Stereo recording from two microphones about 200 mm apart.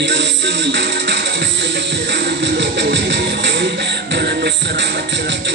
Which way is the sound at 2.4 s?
60° right (ahead or behind).